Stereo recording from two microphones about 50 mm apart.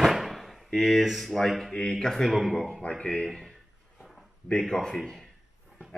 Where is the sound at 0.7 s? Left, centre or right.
Centre.